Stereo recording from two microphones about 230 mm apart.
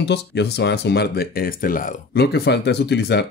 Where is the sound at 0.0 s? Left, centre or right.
Left.